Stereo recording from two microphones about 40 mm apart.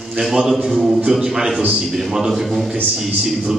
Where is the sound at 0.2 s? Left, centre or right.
Centre.